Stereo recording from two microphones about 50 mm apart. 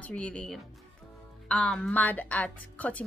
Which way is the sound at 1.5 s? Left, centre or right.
Centre.